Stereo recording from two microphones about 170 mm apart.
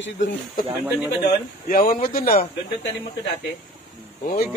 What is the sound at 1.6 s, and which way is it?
Speech, 55° left (ahead or behind).